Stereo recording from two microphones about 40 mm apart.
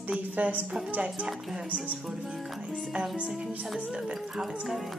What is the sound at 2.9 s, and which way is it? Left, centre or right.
Speech, right.